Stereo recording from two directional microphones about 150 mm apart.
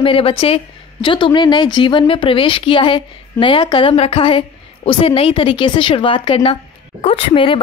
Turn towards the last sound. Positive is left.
turn(degrees=35)  # may be behind; listen again after turning